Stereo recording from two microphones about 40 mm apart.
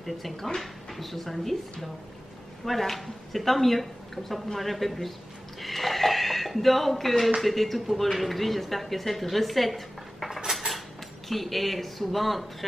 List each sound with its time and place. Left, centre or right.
0.0 s speech: centre
5.6 s a sound: centre
7.3 s speech: centre
10.6 s cutlery: right
11.2 s speech: centre